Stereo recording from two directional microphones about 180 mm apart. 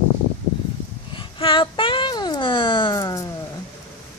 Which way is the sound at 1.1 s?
30° left (ahead or behind).